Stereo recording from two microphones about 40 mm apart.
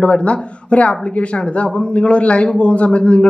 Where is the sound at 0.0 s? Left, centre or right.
Left.